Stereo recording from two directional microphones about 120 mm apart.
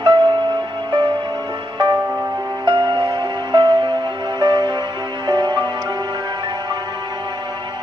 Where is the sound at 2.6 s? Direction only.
40° right (ahead or behind).